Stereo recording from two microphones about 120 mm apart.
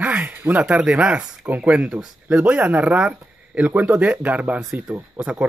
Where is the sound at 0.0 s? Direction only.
15° right (ahead or behind).